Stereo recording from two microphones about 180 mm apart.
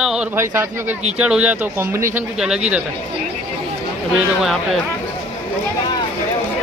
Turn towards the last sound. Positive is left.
turn(degrees=0)  # may be behind; listen again after turning